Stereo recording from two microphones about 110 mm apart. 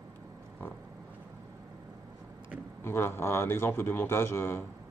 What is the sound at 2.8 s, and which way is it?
Speech, 20° left (ahead or behind).